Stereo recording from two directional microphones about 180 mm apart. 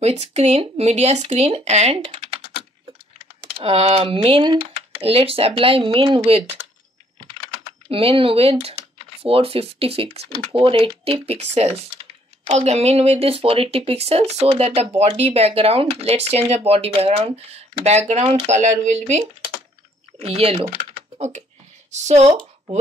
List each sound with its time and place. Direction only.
0.0 s speech: 35° right (ahead or behind)
7.9 s speech: 30° right (ahead or behind)
20.7 s typing: 40° right (ahead or behind)
21.9 s speech: 40° right (ahead or behind)